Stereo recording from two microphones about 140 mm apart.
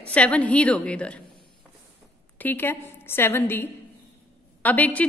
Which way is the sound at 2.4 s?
15° left (ahead or behind).